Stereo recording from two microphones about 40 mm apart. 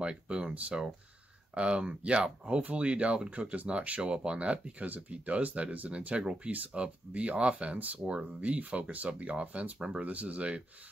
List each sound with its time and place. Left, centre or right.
0.0 s speech: right
4.8 s speech: right
9.8 s speech: right
10.0 s speech: right